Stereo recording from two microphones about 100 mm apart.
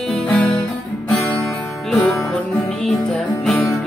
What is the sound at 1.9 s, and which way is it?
Music, 5° left (ahead or behind).